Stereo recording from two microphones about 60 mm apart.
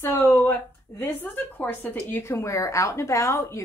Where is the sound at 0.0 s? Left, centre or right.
Left.